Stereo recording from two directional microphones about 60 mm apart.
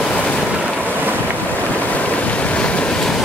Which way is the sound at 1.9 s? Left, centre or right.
Left.